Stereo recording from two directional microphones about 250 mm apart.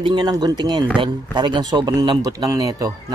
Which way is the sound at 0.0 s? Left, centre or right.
Centre.